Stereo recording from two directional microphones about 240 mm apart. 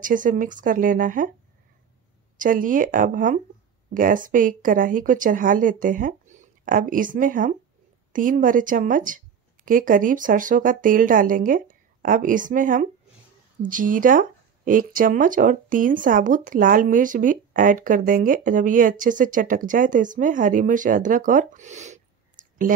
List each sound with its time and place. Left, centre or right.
0.0 s speech: right
2.3 s speech: right